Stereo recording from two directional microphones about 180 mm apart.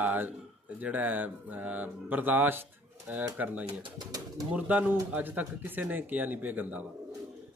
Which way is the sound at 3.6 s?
20° right (ahead or behind).